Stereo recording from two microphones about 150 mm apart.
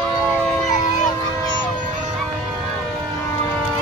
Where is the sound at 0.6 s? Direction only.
55° left (ahead or behind).